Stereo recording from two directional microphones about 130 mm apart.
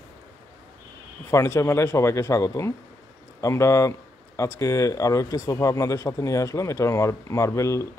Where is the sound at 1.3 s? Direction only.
20° left (ahead or behind).